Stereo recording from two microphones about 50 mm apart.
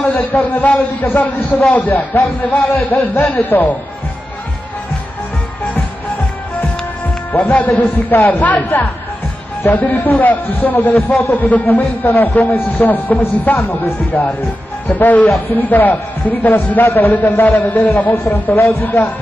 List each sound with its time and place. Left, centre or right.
0.0 s a man's voice: left
5.8 s music: left
7.4 s a man's voice: left
17.0 s a man's voice: left
18.3 s a man's voice: left
18.8 s a man's voice: left